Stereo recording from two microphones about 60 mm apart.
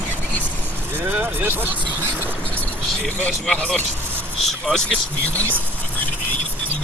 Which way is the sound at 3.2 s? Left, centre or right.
Centre.